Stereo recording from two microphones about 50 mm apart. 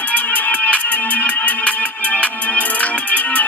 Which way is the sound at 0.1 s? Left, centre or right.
Left.